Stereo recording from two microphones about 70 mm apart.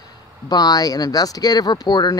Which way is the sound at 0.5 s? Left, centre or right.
Left.